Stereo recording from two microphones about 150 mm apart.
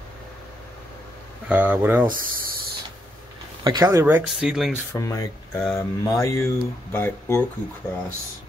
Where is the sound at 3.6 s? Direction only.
25° right (ahead or behind).